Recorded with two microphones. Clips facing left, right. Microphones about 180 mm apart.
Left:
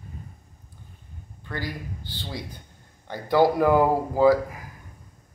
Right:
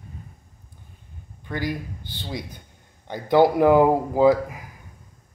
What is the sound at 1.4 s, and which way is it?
Speech, 15° right (ahead or behind).